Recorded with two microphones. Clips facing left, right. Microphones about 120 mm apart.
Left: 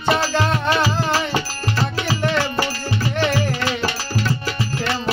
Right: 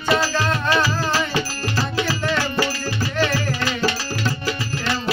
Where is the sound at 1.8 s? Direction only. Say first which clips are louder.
Left 1 dB; 25° left (ahead or behind).